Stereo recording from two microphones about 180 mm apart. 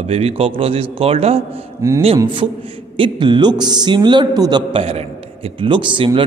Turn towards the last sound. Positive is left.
turn(degrees=-25)  # may be behind; listen again after turning